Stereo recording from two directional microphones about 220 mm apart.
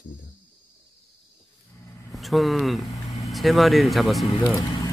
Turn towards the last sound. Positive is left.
turn(degrees=15)  # may be behind; listen again after turning